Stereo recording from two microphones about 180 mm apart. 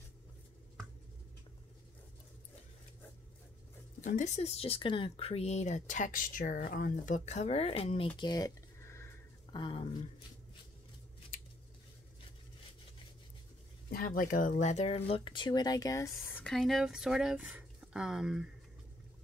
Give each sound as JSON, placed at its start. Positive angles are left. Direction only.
{"t": 4.0, "sound": "speech", "side_deg": 45}
{"t": 8.2, "sound": "a sound", "side_deg": 20}
{"t": 9.6, "sound": "speech", "side_deg": 25}
{"t": 13.8, "sound": "speech", "side_deg": 55}
{"t": 16.5, "sound": "speech", "side_deg": 0}